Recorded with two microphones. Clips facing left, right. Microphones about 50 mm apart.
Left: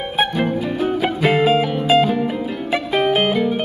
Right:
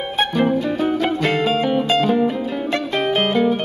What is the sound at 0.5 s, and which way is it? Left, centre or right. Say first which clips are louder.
Music: right 1 dB; centre.